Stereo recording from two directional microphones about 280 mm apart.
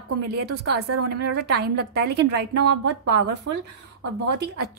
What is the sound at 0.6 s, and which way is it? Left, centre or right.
Speech, right.